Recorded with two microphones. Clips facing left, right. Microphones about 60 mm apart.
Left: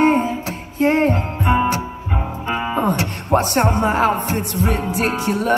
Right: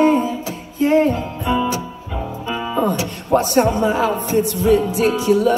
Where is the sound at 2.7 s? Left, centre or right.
Left.